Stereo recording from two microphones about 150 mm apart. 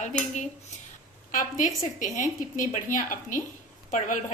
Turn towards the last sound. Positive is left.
turn(degrees=60)  # may be behind; listen again after turning